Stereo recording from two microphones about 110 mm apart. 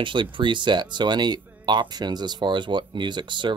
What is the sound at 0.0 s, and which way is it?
Speech, 50° right (ahead or behind).